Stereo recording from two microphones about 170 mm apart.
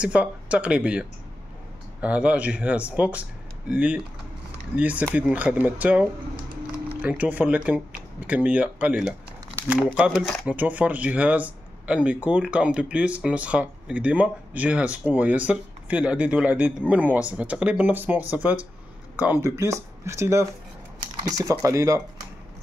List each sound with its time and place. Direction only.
0.0 s speech: 5° right (ahead or behind)
10.4 s speech: 10° right (ahead or behind)